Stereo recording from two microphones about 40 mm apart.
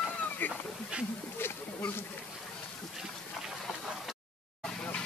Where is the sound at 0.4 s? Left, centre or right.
Left.